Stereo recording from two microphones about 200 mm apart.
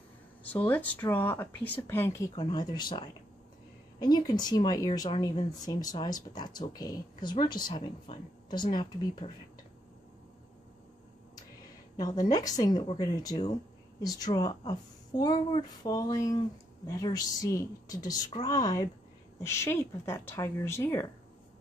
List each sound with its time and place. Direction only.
0.5 s speech: 10° left (ahead or behind)
4.3 s a woman's voice: 20° left (ahead or behind)
12.0 s a woman's voice: 20° left (ahead or behind)